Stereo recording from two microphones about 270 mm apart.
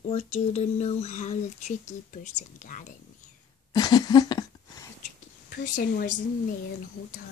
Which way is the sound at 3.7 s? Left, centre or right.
Centre.